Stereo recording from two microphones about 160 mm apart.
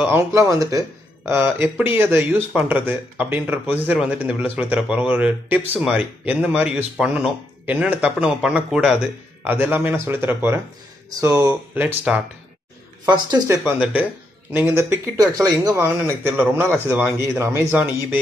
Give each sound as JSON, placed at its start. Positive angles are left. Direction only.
{"t": 0.0, "sound": "speech", "side_deg": -15}
{"t": 11.7, "sound": "speech", "side_deg": -10}
{"t": 13.0, "sound": "speech", "side_deg": -25}
{"t": 13.7, "sound": "speech", "side_deg": -10}